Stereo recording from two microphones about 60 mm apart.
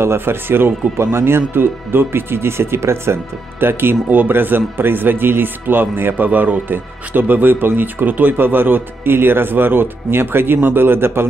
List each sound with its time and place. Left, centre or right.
0.0 s speech: right